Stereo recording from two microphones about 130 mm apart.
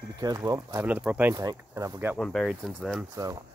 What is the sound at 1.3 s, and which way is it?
Speech, 25° right (ahead or behind).